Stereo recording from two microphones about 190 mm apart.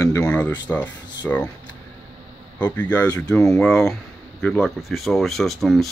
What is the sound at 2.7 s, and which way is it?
Speech, 10° left (ahead or behind).